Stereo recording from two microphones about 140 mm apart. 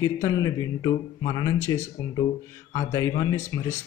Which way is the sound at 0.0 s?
25° left (ahead or behind).